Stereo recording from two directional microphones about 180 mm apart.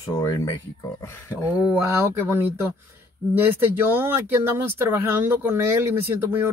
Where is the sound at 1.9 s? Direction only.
15° right (ahead or behind).